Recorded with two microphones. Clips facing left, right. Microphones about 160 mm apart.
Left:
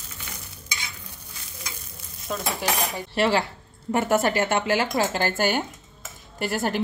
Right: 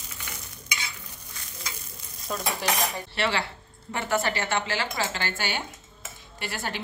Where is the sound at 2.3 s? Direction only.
5° left (ahead or behind).